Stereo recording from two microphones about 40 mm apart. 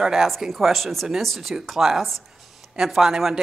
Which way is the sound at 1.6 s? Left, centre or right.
Centre.